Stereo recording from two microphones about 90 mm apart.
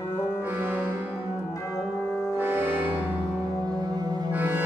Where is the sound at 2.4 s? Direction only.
25° right (ahead or behind).